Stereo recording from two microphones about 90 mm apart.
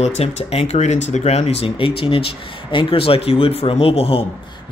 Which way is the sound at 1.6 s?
85° left.